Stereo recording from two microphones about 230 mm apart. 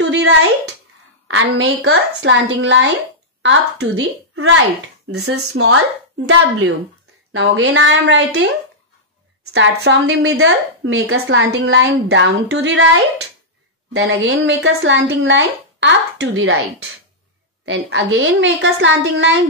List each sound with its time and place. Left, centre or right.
0.0 s a woman's voice: right
5.2 s speech: right
7.3 s speech: right
13.9 s speech: right
17.6 s speech: right